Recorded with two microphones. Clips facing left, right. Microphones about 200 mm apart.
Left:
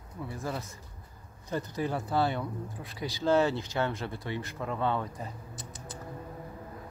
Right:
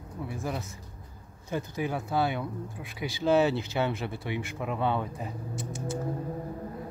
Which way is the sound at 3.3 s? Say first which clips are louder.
Right 2 dB; 15° right (ahead or behind).